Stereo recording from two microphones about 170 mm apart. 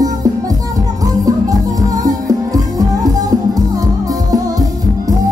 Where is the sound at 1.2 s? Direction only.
20° right (ahead or behind).